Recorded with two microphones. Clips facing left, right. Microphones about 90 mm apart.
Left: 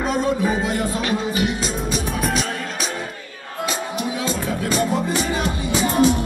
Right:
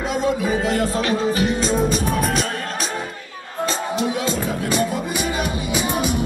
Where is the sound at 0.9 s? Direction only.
35° right (ahead or behind).